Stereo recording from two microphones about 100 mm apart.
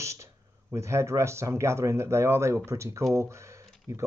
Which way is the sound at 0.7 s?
30° right (ahead or behind).